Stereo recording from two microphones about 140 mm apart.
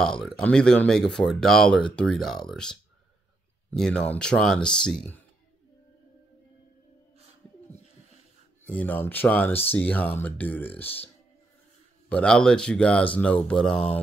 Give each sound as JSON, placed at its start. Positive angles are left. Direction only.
{"t": 0.0, "sound": "speech", "side_deg": 5}
{"t": 8.6, "sound": "speech", "side_deg": 10}
{"t": 12.1, "sound": "speech", "side_deg": 5}